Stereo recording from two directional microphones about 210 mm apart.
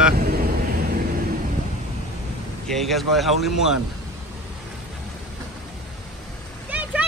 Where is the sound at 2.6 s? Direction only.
Centre (ahead or behind).